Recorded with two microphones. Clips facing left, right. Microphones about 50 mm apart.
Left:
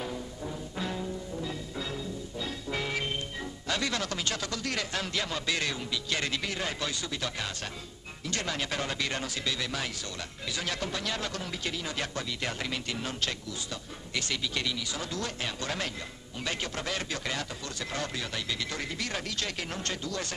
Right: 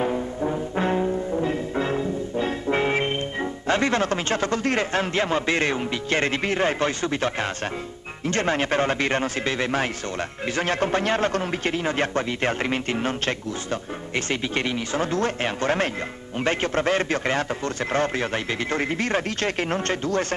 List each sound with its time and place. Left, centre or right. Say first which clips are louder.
0.0 s music: right 12 dB; right
8.3 s a man's voice: right 11 dB; right